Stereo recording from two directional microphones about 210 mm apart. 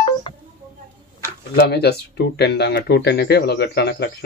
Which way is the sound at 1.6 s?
50° left (ahead or behind).